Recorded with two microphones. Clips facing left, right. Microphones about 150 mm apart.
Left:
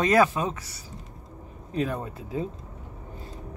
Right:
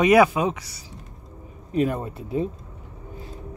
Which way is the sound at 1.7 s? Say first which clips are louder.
Right 5 dB; 15° right (ahead or behind).